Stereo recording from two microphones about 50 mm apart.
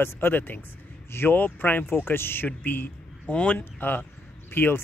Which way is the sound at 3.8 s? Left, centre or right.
Left.